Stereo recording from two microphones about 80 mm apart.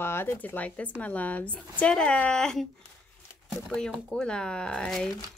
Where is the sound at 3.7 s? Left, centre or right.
Centre.